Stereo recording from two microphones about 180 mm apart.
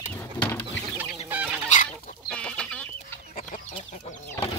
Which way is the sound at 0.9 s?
10° right (ahead or behind).